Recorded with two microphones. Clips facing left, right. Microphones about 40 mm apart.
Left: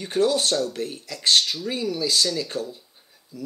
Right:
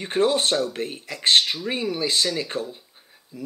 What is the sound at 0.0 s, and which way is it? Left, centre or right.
Speech, right.